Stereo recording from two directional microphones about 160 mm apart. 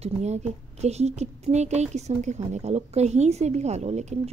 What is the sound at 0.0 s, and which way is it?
A woman's voice, 45° right (ahead or behind).